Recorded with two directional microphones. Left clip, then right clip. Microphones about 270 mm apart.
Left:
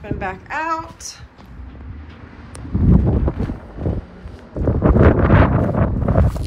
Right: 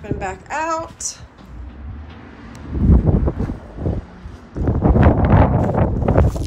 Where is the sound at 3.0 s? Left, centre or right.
Right.